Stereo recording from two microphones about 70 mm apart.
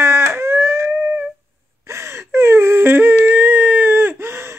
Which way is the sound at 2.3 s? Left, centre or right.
Right.